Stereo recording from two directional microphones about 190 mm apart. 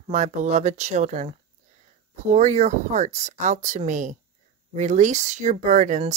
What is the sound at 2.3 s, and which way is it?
Speech, 40° right (ahead or behind).